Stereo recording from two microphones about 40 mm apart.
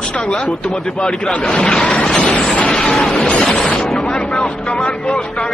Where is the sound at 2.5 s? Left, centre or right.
Left.